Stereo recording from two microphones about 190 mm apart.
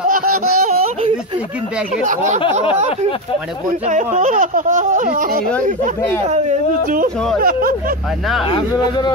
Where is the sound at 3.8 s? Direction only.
40° right (ahead or behind).